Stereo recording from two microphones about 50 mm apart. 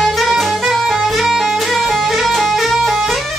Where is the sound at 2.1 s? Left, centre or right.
Centre.